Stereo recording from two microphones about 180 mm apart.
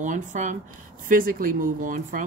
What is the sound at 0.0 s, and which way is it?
Speech, 45° right (ahead or behind).